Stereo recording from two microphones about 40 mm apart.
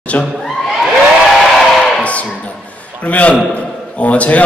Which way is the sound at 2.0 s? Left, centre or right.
Left.